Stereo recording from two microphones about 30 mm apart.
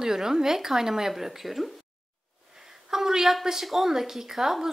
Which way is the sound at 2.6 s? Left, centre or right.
Centre.